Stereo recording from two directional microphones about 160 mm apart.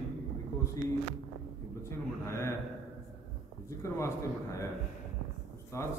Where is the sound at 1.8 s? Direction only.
15° left (ahead or behind).